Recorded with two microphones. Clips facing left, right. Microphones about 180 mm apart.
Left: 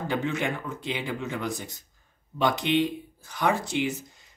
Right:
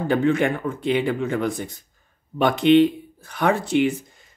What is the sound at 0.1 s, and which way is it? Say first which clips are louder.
Speech: right 9 dB; 55° right (ahead or behind).